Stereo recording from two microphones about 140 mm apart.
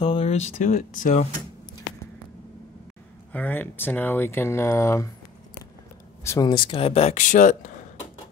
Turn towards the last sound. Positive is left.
turn(degrees=65)  # may be behind; listen again after turning